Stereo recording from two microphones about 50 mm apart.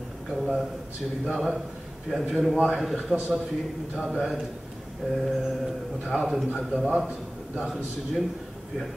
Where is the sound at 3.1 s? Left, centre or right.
Centre.